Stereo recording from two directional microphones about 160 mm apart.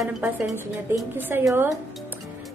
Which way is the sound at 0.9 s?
15° right (ahead or behind).